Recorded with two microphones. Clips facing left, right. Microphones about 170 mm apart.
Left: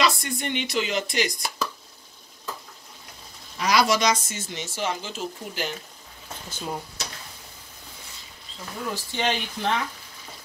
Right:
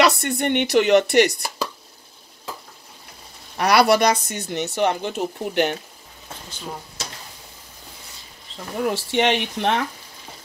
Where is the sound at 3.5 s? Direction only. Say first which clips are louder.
Right 5 dB; 65° right (ahead or behind).